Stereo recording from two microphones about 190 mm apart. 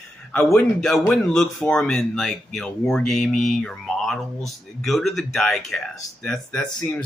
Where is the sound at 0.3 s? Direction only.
10° left (ahead or behind).